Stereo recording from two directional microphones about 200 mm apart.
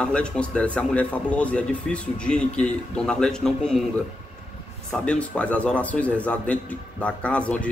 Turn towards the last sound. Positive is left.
turn(degrees=5)  # may be behind; listen again after turning